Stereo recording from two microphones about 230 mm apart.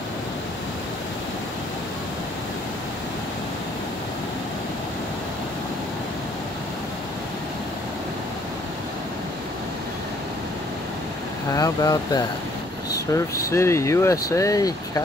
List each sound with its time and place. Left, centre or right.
11.5 s speech: centre